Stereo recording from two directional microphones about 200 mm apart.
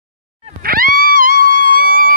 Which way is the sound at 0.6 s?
45° right (ahead or behind).